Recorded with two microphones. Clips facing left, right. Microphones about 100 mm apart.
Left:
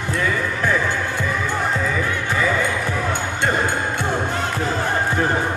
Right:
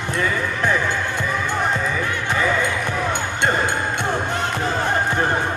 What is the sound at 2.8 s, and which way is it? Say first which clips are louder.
Music: even; 20° right (ahead or behind).